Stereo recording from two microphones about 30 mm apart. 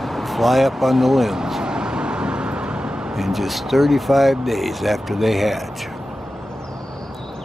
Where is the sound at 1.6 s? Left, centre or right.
Right.